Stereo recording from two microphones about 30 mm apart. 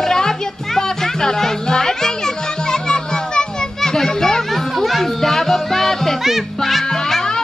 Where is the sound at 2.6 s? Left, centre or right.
Left.